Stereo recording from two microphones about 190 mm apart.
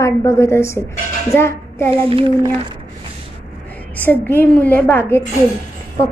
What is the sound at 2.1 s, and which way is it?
Speech, 30° right (ahead or behind).